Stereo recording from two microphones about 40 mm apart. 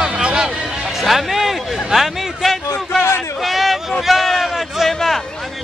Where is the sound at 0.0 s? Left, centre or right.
Centre.